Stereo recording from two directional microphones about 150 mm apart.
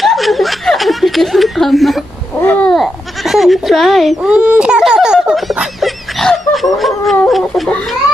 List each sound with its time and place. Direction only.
0.0 s snicker: centre (ahead or behind)
2.4 s bleat: 10° left (ahead or behind)
7.2 s a sound: centre (ahead or behind)